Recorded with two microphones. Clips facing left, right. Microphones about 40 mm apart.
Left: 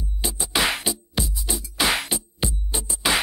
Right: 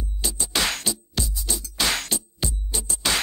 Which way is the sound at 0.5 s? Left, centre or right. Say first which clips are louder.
Left 3 dB; centre.